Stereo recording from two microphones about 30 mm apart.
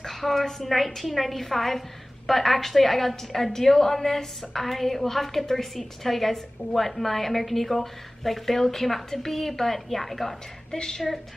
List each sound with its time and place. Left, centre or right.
0.0 s a woman's voice: centre
10.7 s a woman's voice: left